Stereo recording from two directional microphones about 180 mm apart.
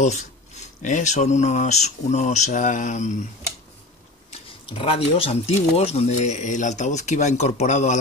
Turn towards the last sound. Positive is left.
turn(degrees=40)  # may be behind; listen again after turning